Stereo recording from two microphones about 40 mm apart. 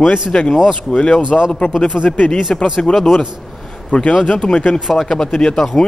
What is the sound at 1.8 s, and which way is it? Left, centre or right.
Speech, left.